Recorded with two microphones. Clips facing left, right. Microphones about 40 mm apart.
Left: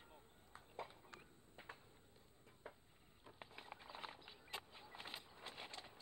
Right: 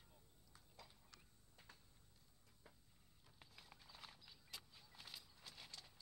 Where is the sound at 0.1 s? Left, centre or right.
Left.